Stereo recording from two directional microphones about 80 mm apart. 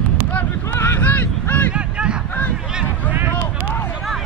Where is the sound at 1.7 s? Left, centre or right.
Centre.